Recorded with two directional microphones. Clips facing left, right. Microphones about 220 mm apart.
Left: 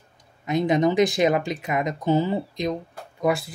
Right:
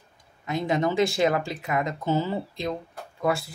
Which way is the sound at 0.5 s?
20° left (ahead or behind).